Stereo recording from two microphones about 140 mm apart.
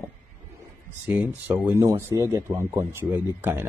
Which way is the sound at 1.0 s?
15° right (ahead or behind).